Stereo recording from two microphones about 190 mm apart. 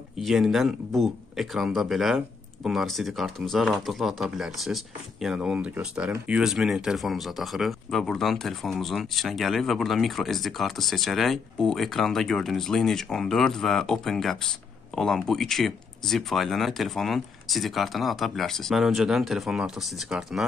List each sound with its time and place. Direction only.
0.2 s speech: centre (ahead or behind)